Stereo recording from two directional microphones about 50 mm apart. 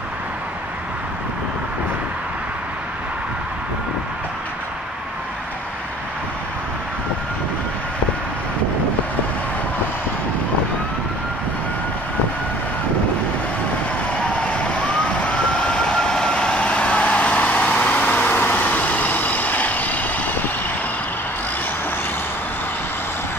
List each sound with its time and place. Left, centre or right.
14.3 s emergency vehicle: left